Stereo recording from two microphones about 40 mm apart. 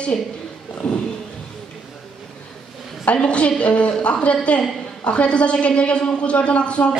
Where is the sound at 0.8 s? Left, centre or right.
Left.